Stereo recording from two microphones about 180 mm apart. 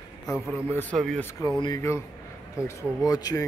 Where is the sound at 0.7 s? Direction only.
5° left (ahead or behind).